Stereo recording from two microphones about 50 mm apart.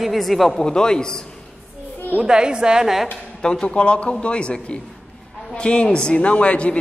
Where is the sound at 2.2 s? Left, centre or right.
Centre.